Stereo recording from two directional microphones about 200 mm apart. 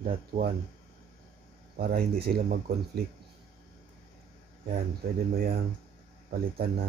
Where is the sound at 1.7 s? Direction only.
45° right (ahead or behind).